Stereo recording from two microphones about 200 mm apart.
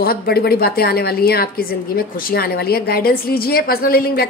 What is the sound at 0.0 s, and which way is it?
A woman's voice, 50° left (ahead or behind).